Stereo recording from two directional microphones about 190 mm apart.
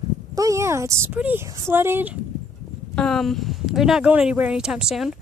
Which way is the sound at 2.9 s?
Centre (ahead or behind).